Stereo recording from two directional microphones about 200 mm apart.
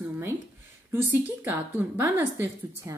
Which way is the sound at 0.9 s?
10° right (ahead or behind).